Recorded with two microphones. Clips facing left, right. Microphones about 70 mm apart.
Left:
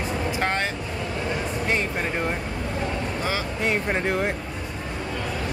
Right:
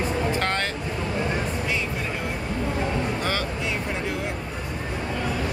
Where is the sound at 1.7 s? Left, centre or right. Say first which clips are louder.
Left 3 dB; left.